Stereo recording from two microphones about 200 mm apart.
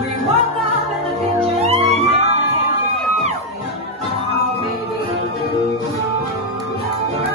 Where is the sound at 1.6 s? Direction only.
30° right (ahead or behind).